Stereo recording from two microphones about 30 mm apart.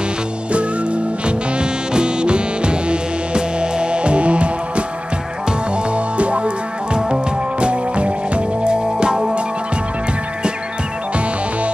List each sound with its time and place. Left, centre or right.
0.5 s music: right
5.9 s music: right